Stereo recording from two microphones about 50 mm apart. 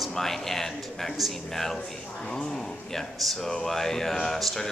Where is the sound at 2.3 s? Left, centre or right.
Centre.